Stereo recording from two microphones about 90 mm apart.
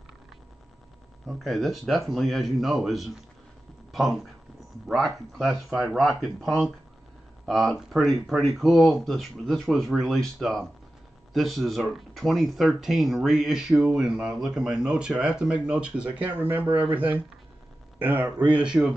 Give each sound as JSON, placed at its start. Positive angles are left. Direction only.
{"t": 1.2, "sound": "speech", "side_deg": 0}